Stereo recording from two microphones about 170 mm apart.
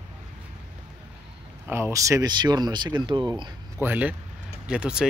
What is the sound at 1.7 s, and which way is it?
Speech, 15° right (ahead or behind).